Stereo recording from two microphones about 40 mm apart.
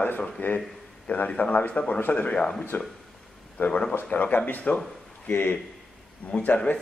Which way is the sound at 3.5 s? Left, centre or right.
Left.